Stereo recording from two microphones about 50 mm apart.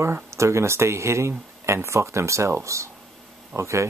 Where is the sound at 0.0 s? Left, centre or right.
Right.